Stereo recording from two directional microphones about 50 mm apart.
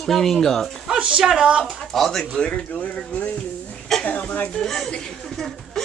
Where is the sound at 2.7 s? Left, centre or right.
Left.